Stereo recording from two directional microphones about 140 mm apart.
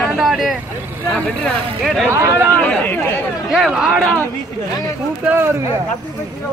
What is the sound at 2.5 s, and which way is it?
Speech, 10° left (ahead or behind).